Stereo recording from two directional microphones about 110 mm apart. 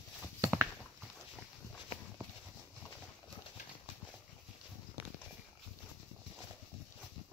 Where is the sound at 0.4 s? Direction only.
20° right (ahead or behind).